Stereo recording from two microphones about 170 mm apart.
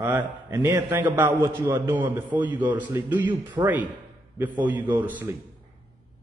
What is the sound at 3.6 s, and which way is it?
Speech, 25° right (ahead or behind).